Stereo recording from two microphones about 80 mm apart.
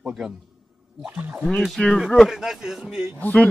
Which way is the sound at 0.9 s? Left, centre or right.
Right.